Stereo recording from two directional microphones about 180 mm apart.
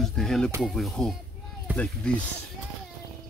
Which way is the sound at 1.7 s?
10° right (ahead or behind).